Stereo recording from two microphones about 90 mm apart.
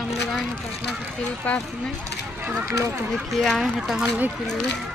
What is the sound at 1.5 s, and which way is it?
Speech, 15° left (ahead or behind).